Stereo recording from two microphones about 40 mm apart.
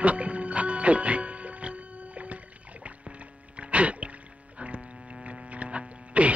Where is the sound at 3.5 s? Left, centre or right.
Right.